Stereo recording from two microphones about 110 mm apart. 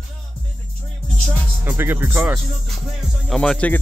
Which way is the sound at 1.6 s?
20° right (ahead or behind).